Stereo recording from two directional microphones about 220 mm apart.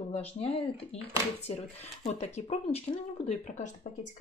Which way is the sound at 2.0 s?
30° left (ahead or behind).